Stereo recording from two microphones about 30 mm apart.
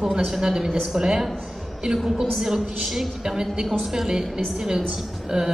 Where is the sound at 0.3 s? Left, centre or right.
Centre.